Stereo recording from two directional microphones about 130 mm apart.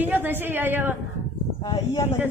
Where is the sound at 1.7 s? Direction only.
20° left (ahead or behind).